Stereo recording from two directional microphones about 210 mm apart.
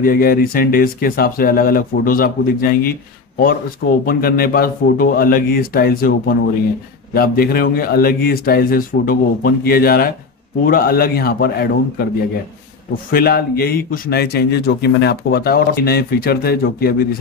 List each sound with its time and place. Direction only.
0.0 s speech: 45° left (ahead or behind)
13.1 s speech: 45° left (ahead or behind)